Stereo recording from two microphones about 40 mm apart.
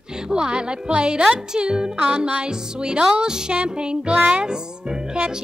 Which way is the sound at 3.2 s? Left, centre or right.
Centre.